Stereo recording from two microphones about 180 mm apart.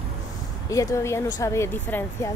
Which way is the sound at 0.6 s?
15° left (ahead or behind).